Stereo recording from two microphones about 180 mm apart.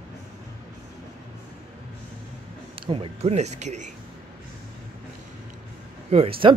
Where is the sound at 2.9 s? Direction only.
30° right (ahead or behind).